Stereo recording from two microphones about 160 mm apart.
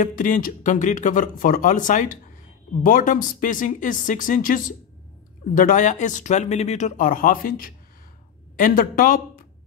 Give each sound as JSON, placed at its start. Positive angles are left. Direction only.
{"t": 0.0, "sound": "speech", "side_deg": 55}